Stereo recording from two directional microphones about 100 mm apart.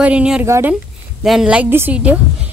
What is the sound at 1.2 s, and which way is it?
Speech, 5° right (ahead or behind).